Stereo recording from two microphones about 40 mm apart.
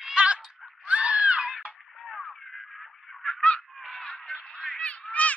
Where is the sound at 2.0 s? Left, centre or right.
Centre.